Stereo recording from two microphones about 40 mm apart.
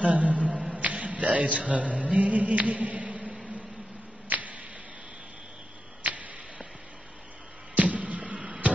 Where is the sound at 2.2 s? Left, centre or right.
Right.